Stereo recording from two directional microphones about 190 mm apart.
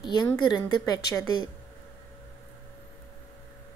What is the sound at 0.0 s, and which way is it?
A woman's voice, 20° left (ahead or behind).